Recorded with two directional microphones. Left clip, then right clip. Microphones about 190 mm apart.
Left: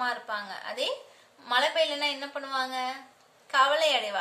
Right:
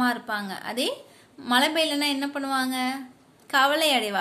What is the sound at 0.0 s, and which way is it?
A woman's voice, 50° right (ahead or behind).